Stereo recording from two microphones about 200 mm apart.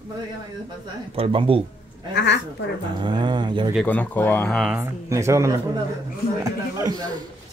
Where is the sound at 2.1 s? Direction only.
60° left (ahead or behind).